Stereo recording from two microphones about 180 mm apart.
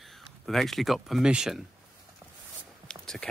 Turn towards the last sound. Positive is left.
turn(degrees=5)  # may be behind; listen again after turning